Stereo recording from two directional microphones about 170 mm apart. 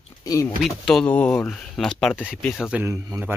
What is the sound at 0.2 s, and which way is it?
Speech, 20° left (ahead or behind).